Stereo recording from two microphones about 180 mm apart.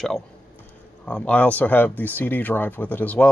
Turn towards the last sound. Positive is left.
turn(degrees=10)  # may be behind; listen again after turning